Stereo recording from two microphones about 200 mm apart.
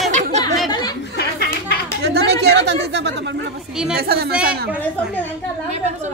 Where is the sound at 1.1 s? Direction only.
50° left (ahead or behind).